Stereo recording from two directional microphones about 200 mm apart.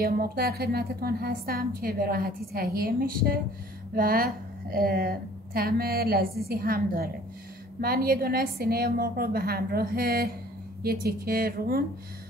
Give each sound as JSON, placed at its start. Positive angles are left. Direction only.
{"t": 0.0, "sound": "a woman's voice", "side_deg": -50}